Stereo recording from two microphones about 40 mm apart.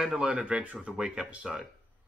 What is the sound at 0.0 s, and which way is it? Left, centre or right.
Speech, right.